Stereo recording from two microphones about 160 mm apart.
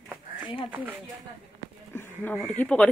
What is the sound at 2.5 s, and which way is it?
Speech, 10° left (ahead or behind).